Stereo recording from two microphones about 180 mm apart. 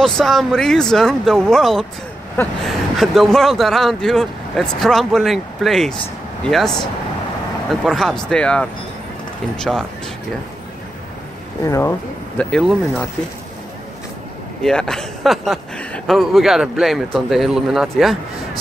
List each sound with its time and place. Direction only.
0.0 s speech: centre (ahead or behind)
7.8 s speech: centre (ahead or behind)
11.6 s speech: 15° left (ahead or behind)
12.4 s speech: 5° left (ahead or behind)
14.6 s speech: 5° left (ahead or behind)